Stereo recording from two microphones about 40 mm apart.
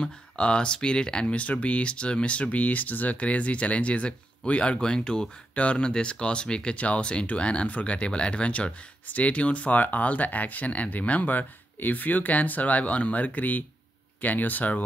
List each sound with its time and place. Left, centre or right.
0.0 s speech: left
1.2 s speech: left; by 5.3 s centre
5.5 s speech: left